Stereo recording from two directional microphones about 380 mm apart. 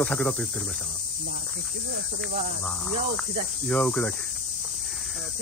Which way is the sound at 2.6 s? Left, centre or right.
Centre.